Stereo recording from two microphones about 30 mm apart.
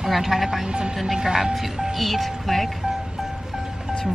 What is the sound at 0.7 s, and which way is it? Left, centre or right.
Speech, right.